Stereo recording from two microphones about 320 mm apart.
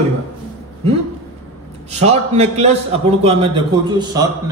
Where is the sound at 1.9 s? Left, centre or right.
Centre.